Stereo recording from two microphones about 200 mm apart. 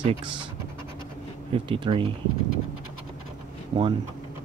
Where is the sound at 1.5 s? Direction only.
25° right (ahead or behind).